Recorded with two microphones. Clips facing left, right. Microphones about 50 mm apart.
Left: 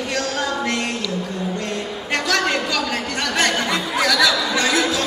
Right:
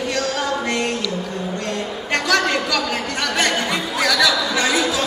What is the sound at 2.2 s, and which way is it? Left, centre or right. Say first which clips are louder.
A woman's voice: right 2 dB; centre.